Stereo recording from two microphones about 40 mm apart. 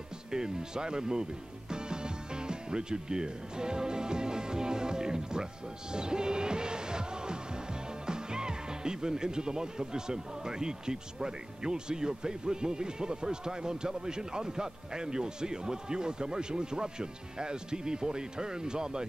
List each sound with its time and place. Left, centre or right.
0.3 s speech: centre